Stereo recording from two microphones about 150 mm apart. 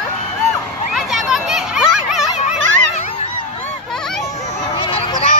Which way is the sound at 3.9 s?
5° left (ahead or behind).